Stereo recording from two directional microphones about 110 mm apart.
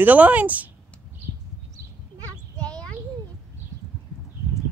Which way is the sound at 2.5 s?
10° left (ahead or behind).